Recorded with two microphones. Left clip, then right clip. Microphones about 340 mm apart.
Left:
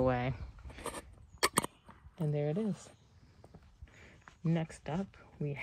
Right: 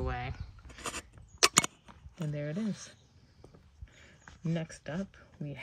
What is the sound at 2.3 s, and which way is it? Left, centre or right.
Speech, centre.